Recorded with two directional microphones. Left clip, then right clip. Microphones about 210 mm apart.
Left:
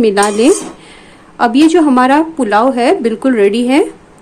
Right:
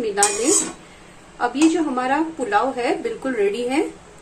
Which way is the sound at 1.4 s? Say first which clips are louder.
Left 10 dB; 55° left (ahead or behind).